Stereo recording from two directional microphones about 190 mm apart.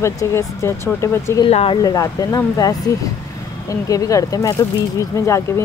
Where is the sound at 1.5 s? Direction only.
30° left (ahead or behind).